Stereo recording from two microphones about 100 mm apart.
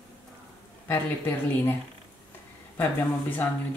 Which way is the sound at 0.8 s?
20° left (ahead or behind).